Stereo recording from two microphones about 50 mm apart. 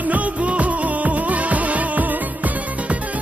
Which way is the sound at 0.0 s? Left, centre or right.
Right.